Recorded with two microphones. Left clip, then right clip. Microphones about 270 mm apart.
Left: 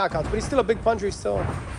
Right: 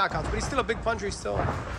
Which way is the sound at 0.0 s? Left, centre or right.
Centre.